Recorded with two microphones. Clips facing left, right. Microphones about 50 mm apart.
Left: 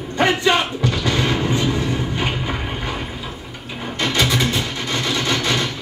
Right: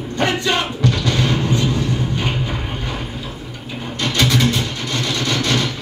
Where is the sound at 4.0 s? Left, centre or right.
Centre.